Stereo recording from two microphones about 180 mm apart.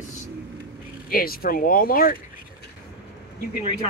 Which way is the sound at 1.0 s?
55° left (ahead or behind).